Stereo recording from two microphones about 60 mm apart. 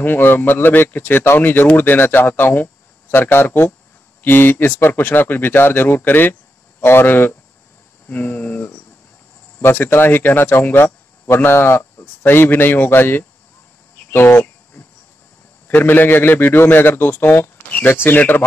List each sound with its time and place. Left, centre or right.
0.0 s a man's voice: left
1.5 s a man's voice: left
8.1 s cricket: left
9.6 s a man's voice: left
15.7 s a man's voice: left